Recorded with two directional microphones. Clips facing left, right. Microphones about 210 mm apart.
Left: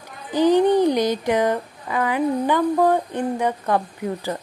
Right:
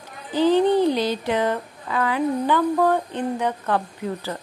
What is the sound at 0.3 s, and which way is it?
Speech, 15° left (ahead or behind).